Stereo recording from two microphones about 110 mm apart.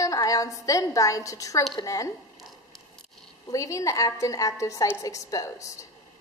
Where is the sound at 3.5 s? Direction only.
30° left (ahead or behind).